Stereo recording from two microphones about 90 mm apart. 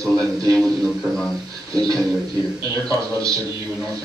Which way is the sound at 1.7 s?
45° right (ahead or behind).